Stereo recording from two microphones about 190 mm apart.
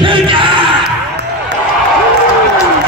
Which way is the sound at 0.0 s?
25° right (ahead or behind).